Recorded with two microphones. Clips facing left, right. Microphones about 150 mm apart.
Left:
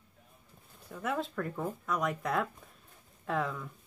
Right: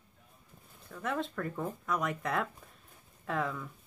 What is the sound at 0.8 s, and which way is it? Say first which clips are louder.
Speech: left 1 dB; 10° left (ahead or behind).